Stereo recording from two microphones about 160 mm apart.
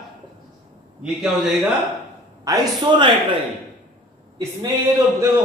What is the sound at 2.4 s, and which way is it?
Speech, 25° right (ahead or behind).